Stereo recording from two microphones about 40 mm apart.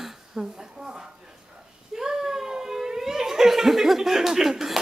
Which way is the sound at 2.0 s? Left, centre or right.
Centre.